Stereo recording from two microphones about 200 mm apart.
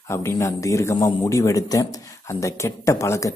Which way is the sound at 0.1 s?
15° left (ahead or behind).